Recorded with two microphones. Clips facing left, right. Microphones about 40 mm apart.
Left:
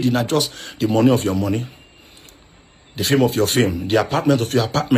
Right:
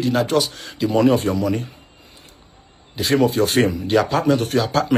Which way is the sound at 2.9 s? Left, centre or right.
Left.